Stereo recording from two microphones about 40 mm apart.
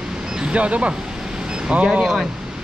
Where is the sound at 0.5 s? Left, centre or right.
Right.